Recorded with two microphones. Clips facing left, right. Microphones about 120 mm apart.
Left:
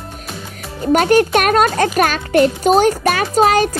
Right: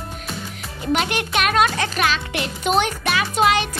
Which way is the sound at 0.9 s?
45° left (ahead or behind).